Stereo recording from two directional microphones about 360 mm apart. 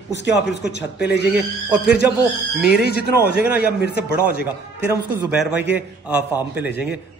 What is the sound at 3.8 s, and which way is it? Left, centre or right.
Speech, left.